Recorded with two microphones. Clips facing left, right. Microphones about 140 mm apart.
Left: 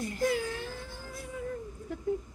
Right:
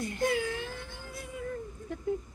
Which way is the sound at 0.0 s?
35° left (ahead or behind).